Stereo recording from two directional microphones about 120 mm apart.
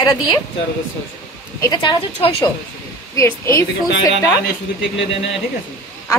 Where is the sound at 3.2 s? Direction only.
25° left (ahead or behind).